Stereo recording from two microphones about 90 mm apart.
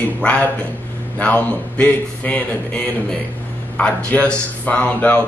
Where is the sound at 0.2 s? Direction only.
15° left (ahead or behind).